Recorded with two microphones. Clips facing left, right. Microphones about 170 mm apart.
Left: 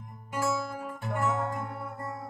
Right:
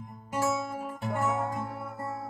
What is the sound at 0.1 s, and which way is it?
Music, 20° right (ahead or behind).